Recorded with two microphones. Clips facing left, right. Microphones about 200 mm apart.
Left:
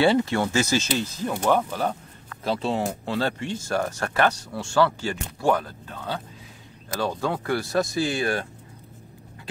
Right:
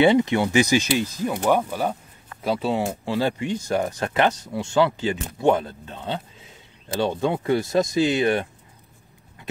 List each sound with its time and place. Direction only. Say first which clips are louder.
0.0 s speech: right 3 dB; 20° right (ahead or behind)